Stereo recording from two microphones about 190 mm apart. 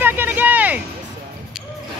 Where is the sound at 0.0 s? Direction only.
10° right (ahead or behind).